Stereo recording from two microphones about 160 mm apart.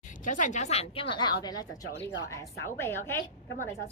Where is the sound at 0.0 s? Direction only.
55° left (ahead or behind).